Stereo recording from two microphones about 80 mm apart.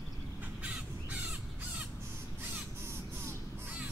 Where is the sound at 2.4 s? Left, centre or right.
Right.